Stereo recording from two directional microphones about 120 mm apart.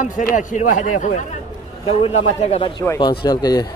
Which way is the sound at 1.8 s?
60° left (ahead or behind).